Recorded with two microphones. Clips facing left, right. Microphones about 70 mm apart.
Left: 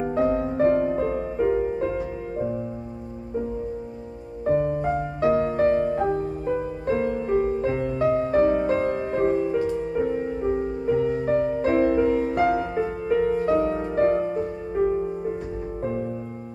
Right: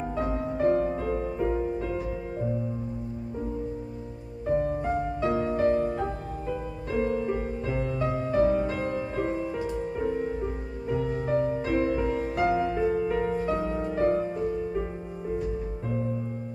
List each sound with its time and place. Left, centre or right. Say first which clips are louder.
0.1 s music: left 8 dB; left
4.5 s music: left 4 dB; left
11.2 s music: left 4 dB; left